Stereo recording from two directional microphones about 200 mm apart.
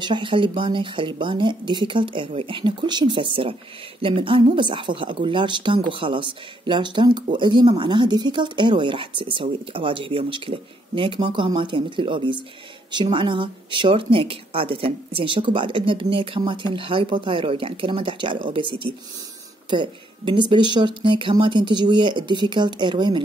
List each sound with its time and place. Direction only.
0.0 s speech: 25° right (ahead or behind)